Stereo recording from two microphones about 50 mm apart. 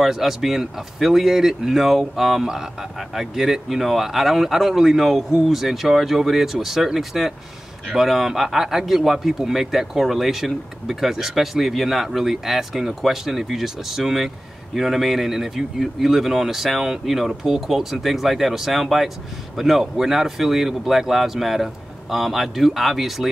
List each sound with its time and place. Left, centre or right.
0.0 s speech: centre